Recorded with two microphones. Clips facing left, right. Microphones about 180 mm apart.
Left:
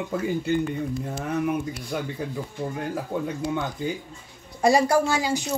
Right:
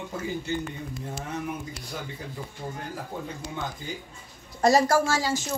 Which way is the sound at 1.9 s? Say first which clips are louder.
Left 8 dB; 60° left (ahead or behind).